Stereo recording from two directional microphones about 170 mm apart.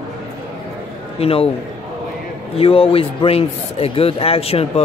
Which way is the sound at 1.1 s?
35° left (ahead or behind).